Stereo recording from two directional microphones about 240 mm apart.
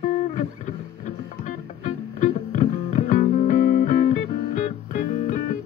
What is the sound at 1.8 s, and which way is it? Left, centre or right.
Music, left.